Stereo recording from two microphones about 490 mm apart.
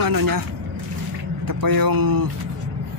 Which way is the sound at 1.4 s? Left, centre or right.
Right.